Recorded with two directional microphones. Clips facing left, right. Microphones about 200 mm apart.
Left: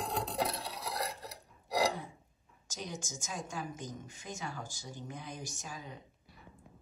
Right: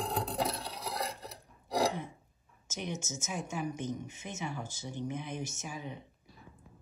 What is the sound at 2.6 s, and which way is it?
A woman's voice, 20° right (ahead or behind).